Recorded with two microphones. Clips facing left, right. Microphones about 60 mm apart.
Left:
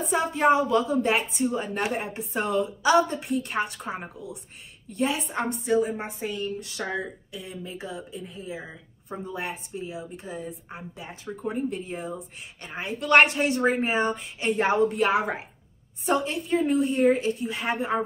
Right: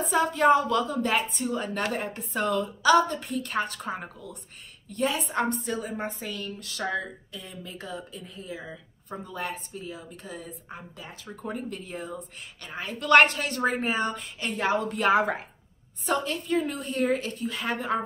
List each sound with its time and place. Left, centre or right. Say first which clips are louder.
0.1 s a woman's voice: right 1 dB; centre
13.0 s a woman's voice: even; centre
14.5 s speech: left 5 dB; left
14.9 s a woman's voice: right 1 dB; centre